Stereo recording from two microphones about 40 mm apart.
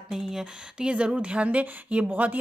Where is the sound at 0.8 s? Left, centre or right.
Right.